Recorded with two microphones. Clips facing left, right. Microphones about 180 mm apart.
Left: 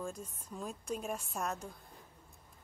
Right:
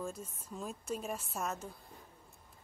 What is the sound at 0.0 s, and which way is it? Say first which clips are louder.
A woman's voice: even; centre (ahead or behind).